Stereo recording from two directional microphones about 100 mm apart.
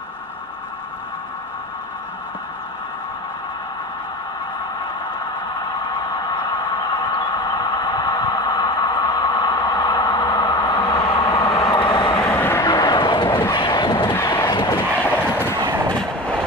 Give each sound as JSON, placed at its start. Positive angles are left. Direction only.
{"t": 6.3, "sound": "a sound", "side_deg": 50}
{"t": 11.7, "sound": "vehicle", "side_deg": 50}
{"t": 12.2, "sound": "vehicle", "side_deg": 15}
{"t": 12.6, "sound": "vehicle", "side_deg": 45}
{"t": 14.9, "sound": "vehicle", "side_deg": 20}